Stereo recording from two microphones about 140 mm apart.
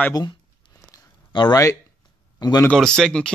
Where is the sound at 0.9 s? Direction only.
30° left (ahead or behind).